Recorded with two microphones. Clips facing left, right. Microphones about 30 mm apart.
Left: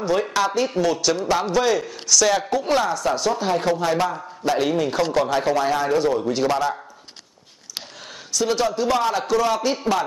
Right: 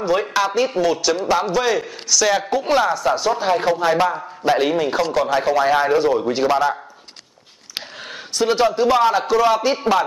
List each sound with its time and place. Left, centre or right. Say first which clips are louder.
0.0 s a man's voice: right 2 dB; centre
5.7 s a man's voice: right 4 dB; right
8.4 s a man's voice: right 4 dB; right